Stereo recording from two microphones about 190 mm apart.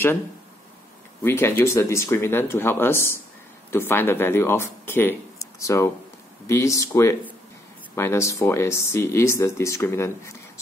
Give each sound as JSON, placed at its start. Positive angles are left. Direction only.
{"t": 1.2, "sound": "speech", "side_deg": 10}